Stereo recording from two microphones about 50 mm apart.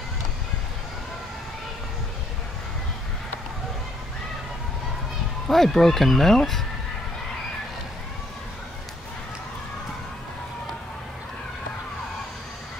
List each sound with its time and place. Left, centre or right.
5.5 s speech: centre